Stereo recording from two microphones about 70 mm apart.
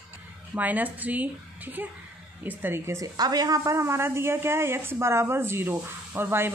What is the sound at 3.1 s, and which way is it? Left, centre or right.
Speech, right.